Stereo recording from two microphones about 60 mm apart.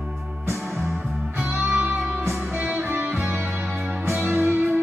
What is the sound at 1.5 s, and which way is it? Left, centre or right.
Music, right.